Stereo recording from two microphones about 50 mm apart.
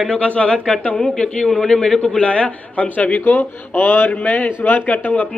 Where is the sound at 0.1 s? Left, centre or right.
Left.